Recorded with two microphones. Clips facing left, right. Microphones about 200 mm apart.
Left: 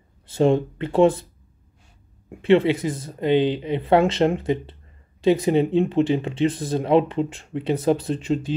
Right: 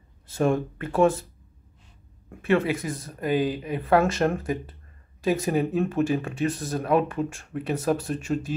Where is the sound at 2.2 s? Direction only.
25° left (ahead or behind).